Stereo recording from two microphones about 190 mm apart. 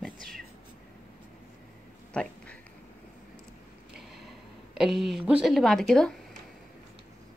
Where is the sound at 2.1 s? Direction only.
5° left (ahead or behind).